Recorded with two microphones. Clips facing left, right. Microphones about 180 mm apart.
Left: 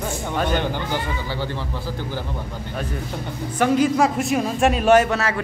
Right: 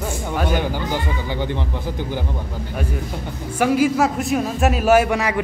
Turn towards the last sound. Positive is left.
turn(degrees=-15)  # may be behind; listen again after turning